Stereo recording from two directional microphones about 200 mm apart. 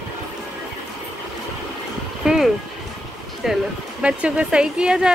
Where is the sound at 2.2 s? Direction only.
Centre (ahead or behind).